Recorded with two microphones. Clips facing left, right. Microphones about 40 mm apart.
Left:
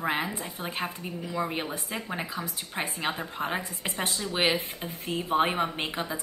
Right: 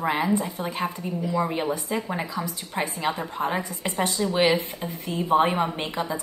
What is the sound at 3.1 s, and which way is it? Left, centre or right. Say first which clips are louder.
A woman's voice: right 4 dB; centre.